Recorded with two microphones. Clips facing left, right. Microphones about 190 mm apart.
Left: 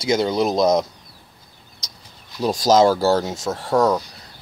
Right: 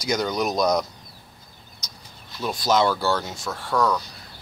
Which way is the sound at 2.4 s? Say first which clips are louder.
Left 6 dB; 40° left (ahead or behind).